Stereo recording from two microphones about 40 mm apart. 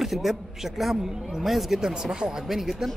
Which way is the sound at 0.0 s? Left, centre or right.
Centre.